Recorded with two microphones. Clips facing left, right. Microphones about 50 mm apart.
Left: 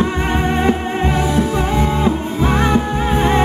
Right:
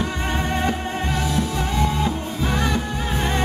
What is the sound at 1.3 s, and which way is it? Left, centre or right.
Music, left.